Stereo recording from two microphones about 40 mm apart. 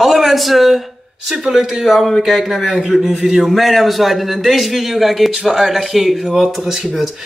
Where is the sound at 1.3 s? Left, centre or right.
Centre.